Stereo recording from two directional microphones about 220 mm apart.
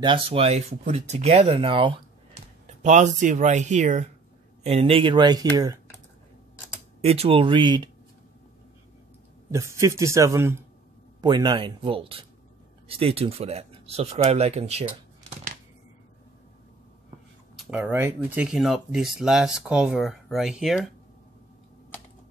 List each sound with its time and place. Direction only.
0.0 s speech: 25° right (ahead or behind)
7.0 s speech: 30° right (ahead or behind)
9.5 s a man's voice: 15° right (ahead or behind); by 15.5 s 30° right (ahead or behind)
17.6 s speech: 5° right (ahead or behind)